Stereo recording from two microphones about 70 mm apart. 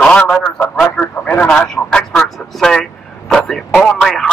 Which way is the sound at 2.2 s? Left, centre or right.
Centre.